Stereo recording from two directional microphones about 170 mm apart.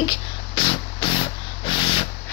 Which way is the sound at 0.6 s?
30° left (ahead or behind).